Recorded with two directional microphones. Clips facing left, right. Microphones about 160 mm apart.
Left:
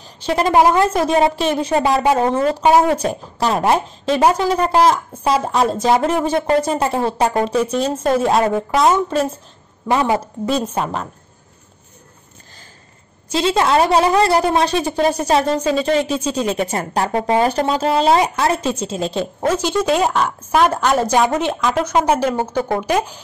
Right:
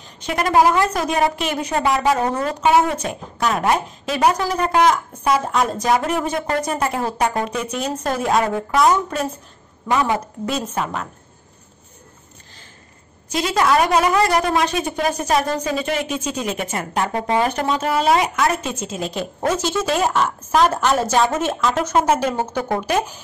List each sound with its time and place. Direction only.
0.0 s a woman's voice: 30° left (ahead or behind)
13.3 s a woman's voice: 25° left (ahead or behind)
19.4 s a woman's voice: 10° left (ahead or behind)